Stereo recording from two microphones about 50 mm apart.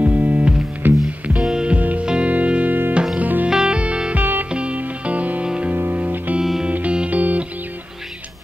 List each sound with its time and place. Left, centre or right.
0.0 s music: right
1.4 s music: centre
1.8 s music: right
2.0 s music: right
3.4 s music: centre
4.2 s music: right
4.5 s music: right